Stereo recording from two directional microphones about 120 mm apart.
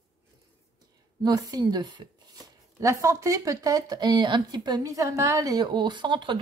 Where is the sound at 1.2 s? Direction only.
35° right (ahead or behind).